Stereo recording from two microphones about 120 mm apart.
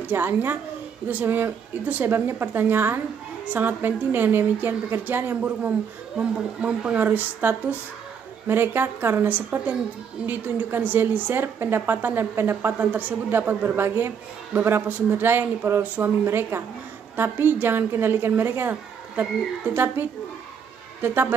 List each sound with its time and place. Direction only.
0.0 s a woman's voice: 15° right (ahead or behind)